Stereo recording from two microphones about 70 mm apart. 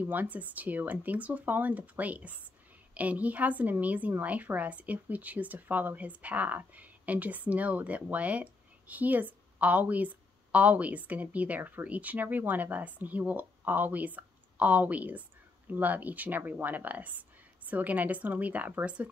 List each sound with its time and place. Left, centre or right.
0.0 s speech: right